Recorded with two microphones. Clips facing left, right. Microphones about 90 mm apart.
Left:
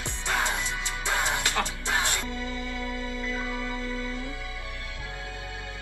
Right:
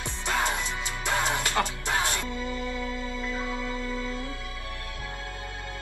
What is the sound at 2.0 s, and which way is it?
Music, 15° left (ahead or behind).